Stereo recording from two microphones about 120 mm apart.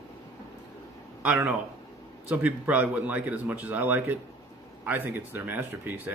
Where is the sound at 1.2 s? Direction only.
10° right (ahead or behind).